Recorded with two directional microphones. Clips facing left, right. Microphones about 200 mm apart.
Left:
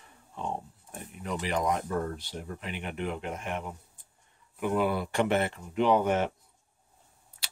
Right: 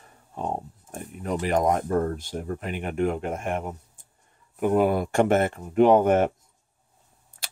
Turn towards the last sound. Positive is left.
turn(degrees=-50)  # may be behind; listen again after turning